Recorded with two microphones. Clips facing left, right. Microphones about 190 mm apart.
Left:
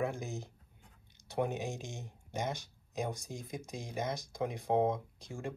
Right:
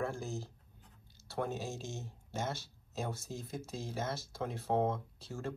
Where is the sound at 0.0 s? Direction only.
15° left (ahead or behind).